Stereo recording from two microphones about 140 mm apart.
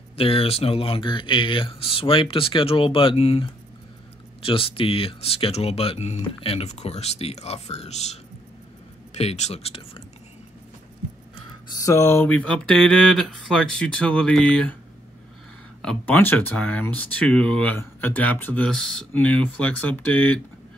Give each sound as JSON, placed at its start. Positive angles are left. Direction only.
{"t": 0.2, "sound": "speech", "side_deg": 45}
{"t": 11.7, "sound": "speech", "side_deg": 25}
{"t": 15.8, "sound": "speech", "side_deg": 10}